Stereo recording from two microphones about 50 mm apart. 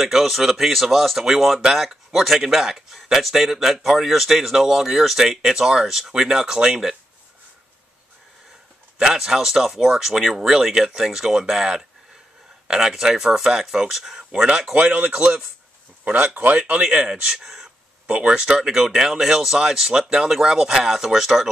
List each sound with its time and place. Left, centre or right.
0.0 s speech: centre
8.9 s speech: centre